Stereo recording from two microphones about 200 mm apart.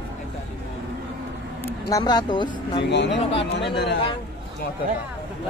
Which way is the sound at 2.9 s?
60° left (ahead or behind).